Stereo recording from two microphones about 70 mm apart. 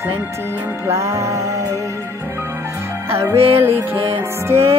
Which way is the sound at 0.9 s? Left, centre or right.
Right.